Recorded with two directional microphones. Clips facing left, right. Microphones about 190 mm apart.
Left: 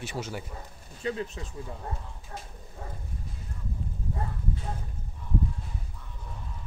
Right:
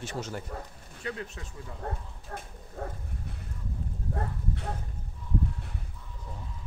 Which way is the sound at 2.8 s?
60° right (ahead or behind).